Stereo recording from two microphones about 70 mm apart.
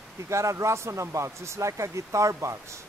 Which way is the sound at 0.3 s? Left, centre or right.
Right.